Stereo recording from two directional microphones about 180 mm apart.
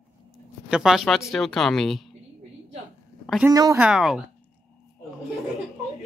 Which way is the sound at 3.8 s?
5° right (ahead or behind).